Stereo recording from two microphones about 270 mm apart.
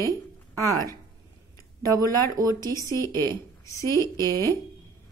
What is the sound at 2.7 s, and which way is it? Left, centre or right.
Speech, centre.